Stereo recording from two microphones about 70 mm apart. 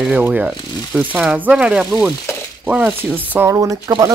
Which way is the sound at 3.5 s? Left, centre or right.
Right.